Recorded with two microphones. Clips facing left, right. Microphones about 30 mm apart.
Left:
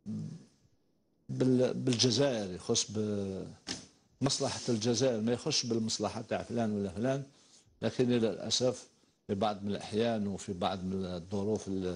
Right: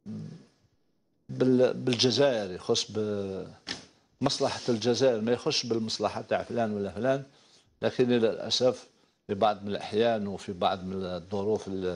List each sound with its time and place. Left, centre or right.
0.1 s grunt: right
1.3 s speech: right